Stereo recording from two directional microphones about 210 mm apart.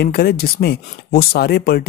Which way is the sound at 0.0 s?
50° left (ahead or behind).